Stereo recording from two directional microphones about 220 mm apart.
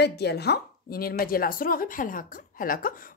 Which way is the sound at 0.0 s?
50° left (ahead or behind).